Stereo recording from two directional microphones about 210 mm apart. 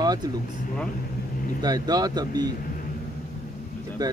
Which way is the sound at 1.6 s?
20° right (ahead or behind).